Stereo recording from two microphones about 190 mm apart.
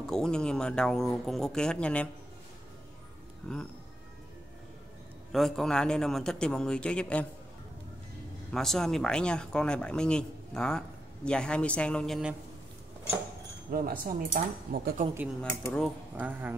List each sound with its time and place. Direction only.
0.0 s speech: 5° left (ahead or behind)
3.4 s speech: 5° left (ahead or behind)
5.3 s speech: centre (ahead or behind)
8.5 s speech: centre (ahead or behind)
13.7 s speech: 50° right (ahead or behind)
15.7 s speech: centre (ahead or behind)
16.3 s speech: 10° right (ahead or behind)